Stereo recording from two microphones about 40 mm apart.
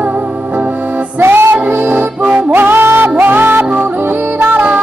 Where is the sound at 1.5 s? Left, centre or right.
Right.